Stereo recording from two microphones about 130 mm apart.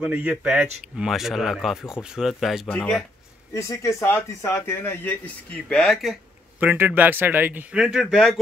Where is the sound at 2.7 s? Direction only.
15° left (ahead or behind).